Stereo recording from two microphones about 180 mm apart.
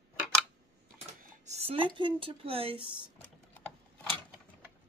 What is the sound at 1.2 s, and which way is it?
Speech, 40° right (ahead or behind).